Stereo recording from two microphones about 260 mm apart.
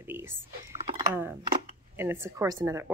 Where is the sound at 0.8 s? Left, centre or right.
Right.